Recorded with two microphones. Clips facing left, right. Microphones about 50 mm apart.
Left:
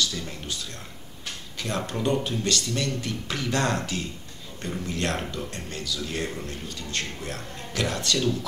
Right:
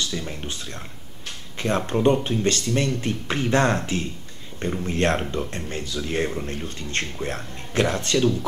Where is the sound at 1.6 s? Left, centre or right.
Right.